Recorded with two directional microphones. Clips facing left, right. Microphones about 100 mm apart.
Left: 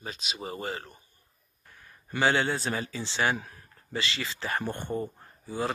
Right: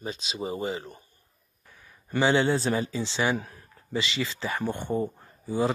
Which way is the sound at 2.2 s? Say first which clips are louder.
Right 3 dB; 25° right (ahead or behind).